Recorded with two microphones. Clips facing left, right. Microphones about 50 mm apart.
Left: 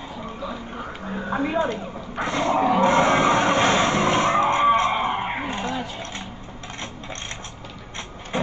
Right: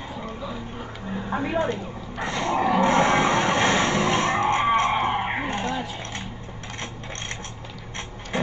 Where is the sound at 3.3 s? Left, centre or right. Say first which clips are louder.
Left 2 dB; left.